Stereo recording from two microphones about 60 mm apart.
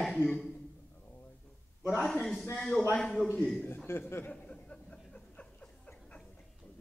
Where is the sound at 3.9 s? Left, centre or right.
Left.